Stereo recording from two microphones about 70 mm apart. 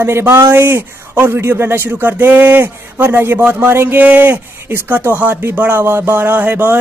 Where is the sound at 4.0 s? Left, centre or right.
Right.